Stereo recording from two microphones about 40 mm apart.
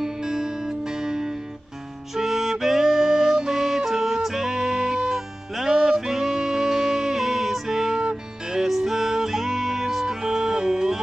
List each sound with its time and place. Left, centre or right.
0.0 s music: centre
8.6 s music: centre